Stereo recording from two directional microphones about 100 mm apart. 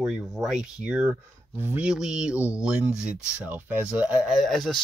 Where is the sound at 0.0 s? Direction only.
5° right (ahead or behind).